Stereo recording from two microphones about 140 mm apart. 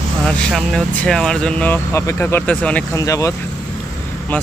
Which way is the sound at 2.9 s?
25° left (ahead or behind).